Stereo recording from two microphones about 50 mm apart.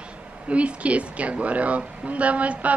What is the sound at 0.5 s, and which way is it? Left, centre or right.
Speech, right.